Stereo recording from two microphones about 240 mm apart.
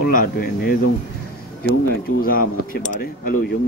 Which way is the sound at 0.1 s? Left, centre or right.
Left.